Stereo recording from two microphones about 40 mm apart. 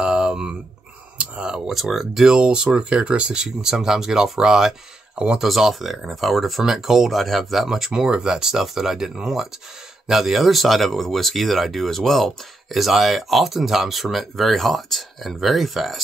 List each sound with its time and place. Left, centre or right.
0.0 s a sound: right
1.1 s a sound: right
1.7 s speech: centre
2.2 s speech: right
5.1 s speech: right
5.4 s speech: centre